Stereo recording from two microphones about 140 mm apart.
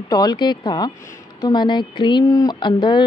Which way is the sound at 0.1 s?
30° left (ahead or behind).